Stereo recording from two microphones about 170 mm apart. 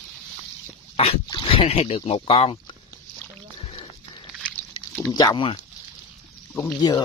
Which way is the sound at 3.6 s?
30° left (ahead or behind).